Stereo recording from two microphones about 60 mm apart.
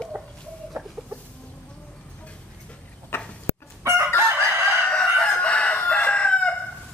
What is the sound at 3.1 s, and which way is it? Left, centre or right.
Tick-tock, left.